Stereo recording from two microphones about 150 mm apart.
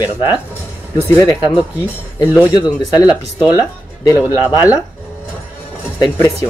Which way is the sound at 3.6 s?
20° left (ahead or behind).